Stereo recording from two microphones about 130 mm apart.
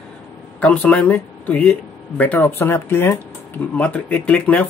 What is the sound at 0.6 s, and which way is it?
Speech, 10° left (ahead or behind).